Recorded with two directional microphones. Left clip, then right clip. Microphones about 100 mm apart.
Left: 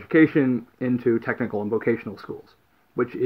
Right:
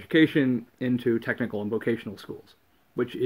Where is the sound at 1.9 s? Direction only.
15° right (ahead or behind).